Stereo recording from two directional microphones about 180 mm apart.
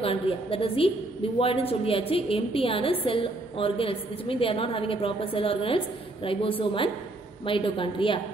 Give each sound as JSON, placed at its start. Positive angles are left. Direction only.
{"t": 0.0, "sound": "a woman's voice", "side_deg": 30}